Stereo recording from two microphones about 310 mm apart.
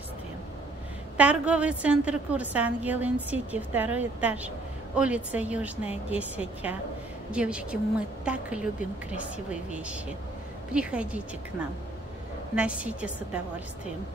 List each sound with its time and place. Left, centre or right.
1.1 s a woman's voice: centre
12.5 s a woman's voice: centre